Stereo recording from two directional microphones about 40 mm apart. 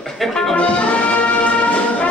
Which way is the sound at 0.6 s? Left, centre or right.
Left.